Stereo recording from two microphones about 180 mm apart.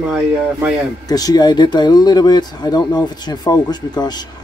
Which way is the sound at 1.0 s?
20° left (ahead or behind).